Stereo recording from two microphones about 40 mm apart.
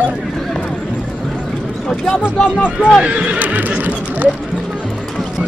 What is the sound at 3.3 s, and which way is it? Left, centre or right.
Neigh, right.